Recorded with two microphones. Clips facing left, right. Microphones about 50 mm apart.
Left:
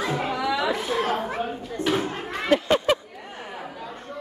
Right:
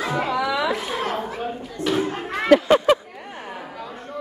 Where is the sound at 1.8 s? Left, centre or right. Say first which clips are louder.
Right 1 dB; left.